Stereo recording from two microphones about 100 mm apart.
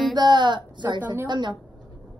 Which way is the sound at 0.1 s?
45° right (ahead or behind).